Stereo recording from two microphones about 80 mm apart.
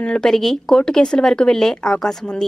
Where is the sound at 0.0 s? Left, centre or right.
Centre.